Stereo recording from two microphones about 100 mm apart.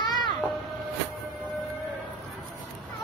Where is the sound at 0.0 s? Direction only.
45° left (ahead or behind).